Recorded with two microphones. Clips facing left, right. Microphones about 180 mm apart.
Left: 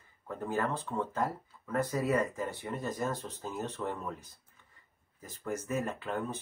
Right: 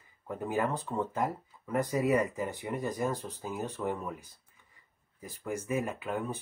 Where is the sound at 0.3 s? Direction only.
15° right (ahead or behind).